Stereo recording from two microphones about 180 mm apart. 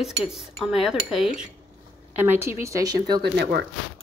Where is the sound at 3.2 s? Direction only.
65° right (ahead or behind).